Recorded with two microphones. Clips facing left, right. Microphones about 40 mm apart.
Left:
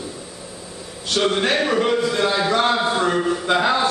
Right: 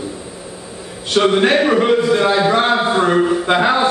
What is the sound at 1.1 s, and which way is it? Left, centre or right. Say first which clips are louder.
A man's voice: right 6 dB; centre.